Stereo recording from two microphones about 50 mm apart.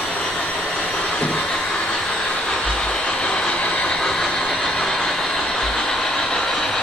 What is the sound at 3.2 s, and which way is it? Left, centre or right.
Train, centre.